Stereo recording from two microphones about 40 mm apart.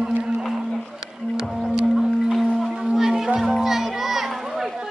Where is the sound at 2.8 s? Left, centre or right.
Centre.